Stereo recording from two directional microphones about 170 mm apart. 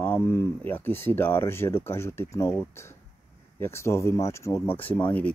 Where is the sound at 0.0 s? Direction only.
10° left (ahead or behind).